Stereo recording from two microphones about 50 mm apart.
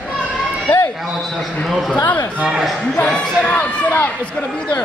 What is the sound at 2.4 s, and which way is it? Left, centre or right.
Speech, centre.